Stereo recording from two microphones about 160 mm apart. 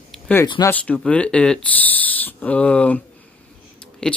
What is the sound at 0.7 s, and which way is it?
Speech, 5° left (ahead or behind).